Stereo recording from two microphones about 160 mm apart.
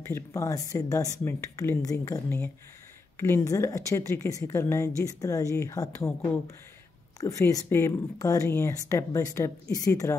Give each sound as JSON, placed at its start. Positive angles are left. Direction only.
{"t": 0.1, "sound": "speech", "side_deg": 20}